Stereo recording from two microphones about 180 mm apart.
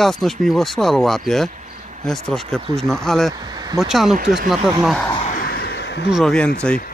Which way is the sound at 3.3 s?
20° right (ahead or behind).